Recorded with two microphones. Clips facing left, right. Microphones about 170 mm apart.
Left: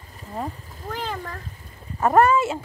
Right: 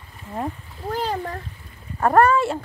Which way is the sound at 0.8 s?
40° right (ahead or behind).